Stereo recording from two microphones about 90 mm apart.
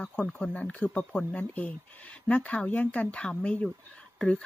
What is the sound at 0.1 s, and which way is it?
Speech, 15° left (ahead or behind).